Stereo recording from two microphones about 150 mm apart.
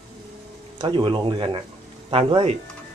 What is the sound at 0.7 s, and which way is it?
Speech, 30° right (ahead or behind).